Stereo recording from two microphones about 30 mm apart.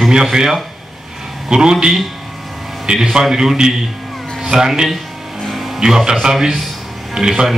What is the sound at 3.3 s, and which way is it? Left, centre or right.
Speech, centre.